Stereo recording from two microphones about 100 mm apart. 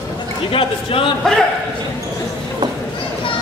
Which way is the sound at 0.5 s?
60° left (ahead or behind).